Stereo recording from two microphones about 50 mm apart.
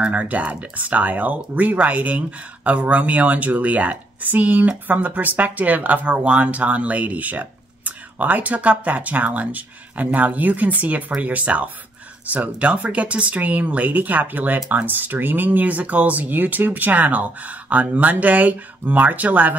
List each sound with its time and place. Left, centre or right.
0.0 s speech: right